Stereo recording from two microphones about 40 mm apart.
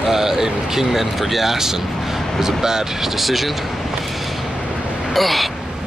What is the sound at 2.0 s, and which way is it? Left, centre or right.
Vehicle, centre.